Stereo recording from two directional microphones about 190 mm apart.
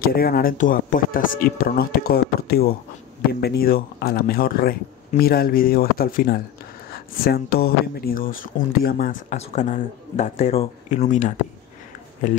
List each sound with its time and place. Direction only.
0.0 s speech: 50° left (ahead or behind)
9.4 s speech: 35° left (ahead or behind)